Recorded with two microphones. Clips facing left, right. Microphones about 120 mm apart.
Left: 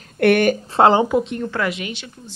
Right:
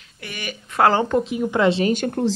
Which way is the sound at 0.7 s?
20° left (ahead or behind).